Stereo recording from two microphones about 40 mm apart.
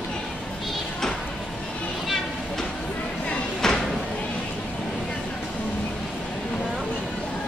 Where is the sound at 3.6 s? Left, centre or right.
Centre.